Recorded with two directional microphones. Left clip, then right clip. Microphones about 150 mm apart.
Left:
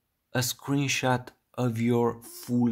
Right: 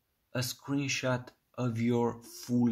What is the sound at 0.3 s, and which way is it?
Speech, 45° left (ahead or behind).